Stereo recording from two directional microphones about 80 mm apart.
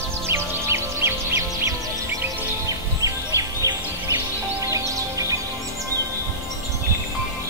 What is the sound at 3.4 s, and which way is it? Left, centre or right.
Music, right.